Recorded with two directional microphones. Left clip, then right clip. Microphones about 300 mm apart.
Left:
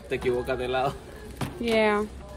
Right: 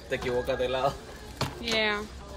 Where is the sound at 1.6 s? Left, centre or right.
Centre.